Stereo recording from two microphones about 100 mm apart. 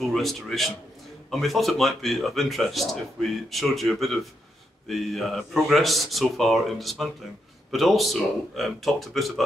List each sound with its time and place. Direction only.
0.0 s speech: centre (ahead or behind)